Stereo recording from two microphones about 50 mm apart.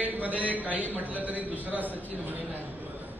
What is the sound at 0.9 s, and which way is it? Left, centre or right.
A woman's voice, right.